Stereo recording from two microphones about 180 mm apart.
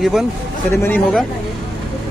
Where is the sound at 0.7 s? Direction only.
15° left (ahead or behind).